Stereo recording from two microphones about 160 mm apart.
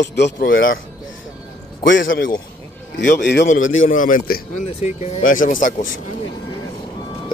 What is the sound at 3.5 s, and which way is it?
Speech, 55° left (ahead or behind).